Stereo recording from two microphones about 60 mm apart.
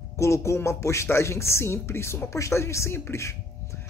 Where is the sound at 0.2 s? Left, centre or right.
Left.